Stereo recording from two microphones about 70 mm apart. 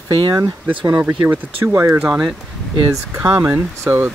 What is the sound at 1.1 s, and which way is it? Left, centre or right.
Speech, right.